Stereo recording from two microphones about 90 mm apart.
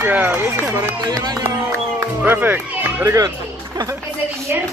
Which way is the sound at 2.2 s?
20° right (ahead or behind).